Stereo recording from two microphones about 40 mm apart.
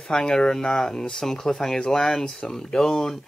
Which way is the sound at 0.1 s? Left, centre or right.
Centre.